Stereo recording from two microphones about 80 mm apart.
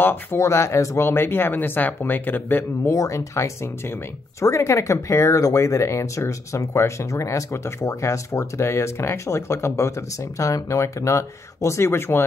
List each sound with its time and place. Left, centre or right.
0.0 s speech: left
0.4 s speech: left
2.8 s speech: left